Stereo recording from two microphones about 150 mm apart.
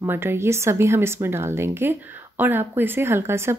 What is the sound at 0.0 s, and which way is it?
A woman's voice, 15° right (ahead or behind).